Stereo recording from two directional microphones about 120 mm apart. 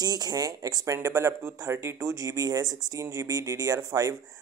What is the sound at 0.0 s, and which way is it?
Speech, 35° right (ahead or behind).